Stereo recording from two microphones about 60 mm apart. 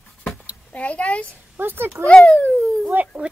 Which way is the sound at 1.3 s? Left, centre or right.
Right.